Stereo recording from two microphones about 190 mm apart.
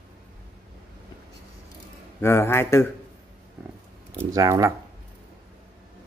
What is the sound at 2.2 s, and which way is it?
Speech, 15° left (ahead or behind).